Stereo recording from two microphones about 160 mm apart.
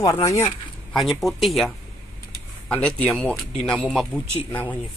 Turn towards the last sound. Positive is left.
turn(degrees=10)  # may be behind; listen again after turning